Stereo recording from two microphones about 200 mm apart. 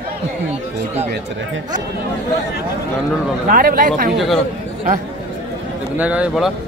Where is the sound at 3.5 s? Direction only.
45° right (ahead or behind).